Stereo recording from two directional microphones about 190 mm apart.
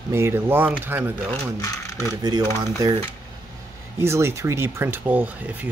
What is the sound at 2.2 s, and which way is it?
Speech, 20° right (ahead or behind).